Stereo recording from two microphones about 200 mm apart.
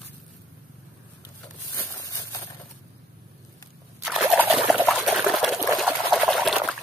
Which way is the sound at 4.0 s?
5° right (ahead or behind).